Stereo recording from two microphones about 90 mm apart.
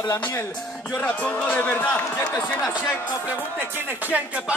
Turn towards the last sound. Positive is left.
turn(degrees=-15)  # may be behind; listen again after turning